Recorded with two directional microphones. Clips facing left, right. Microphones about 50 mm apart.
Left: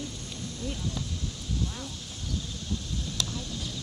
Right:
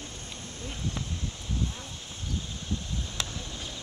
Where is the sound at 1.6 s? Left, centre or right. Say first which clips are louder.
Even; right.